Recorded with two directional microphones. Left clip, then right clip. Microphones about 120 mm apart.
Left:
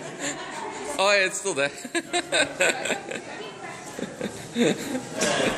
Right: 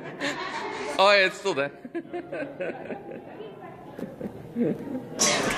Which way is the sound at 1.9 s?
35° left (ahead or behind).